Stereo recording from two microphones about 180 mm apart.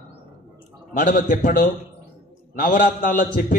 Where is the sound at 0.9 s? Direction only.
50° left (ahead or behind).